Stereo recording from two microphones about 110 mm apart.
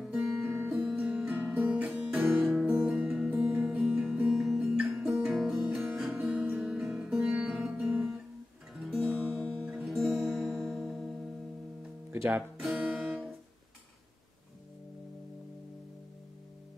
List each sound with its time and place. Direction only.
0.0 s music: 5° right (ahead or behind)
0.4 s music: 20° right (ahead or behind)
2.3 s music: centre (ahead or behind)
4.3 s guitar: centre (ahead or behind)
4.6 s music: 10° right (ahead or behind)
8.7 s music: centre (ahead or behind)
9.1 s music: 10° right (ahead or behind)
12.1 s music: 20° right (ahead or behind)
12.5 s music: centre (ahead or behind)